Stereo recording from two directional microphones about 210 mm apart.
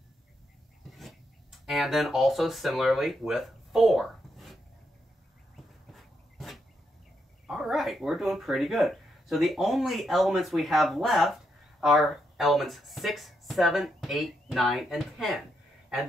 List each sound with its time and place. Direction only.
0.8 s speech: centre (ahead or behind)
5.9 s a sound: centre (ahead or behind)
7.4 s speech: centre (ahead or behind)